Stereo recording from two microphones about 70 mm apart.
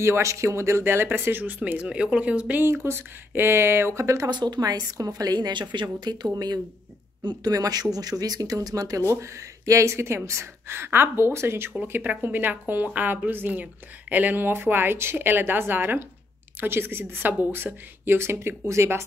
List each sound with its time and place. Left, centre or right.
0.0 s speech: right; by 2.6 s centre
2.6 s speech: right
4.3 s a woman's voice: right
6.2 s a woman's voice: right